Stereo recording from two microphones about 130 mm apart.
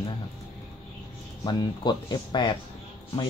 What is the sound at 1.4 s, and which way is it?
Speech, 35° left (ahead or behind).